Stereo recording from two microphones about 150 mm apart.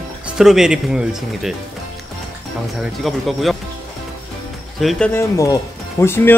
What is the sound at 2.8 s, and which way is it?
Speech, centre (ahead or behind).